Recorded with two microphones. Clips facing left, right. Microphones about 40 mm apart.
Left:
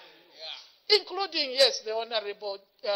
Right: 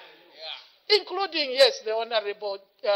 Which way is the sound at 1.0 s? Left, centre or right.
Centre.